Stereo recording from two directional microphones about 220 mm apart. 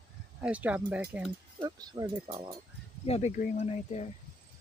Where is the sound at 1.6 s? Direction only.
20° right (ahead or behind).